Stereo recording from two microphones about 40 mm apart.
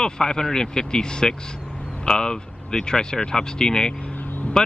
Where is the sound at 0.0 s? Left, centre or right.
Centre.